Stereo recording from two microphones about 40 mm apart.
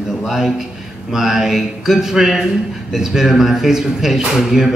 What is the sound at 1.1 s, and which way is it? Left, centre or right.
A man's voice, centre.